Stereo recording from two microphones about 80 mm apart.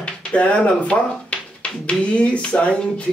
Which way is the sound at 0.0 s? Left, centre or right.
Centre.